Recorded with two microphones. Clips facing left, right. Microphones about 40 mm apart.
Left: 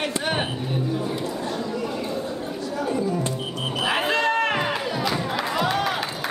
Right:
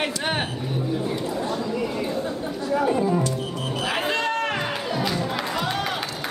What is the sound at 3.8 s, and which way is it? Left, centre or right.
Crowd, centre.